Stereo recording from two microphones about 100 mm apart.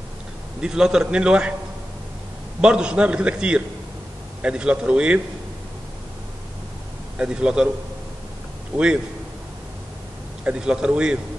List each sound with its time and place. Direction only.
0.6 s a man's voice: 5° right (ahead or behind)
2.6 s a man's voice: 10° right (ahead or behind)
7.2 s a man's voice: 10° right (ahead or behind)
8.7 s a man's voice: 10° right (ahead or behind)
10.4 s a man's voice: 10° right (ahead or behind)